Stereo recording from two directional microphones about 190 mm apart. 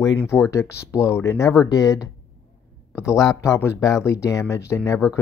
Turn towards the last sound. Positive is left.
turn(degrees=15)  # may be behind; listen again after turning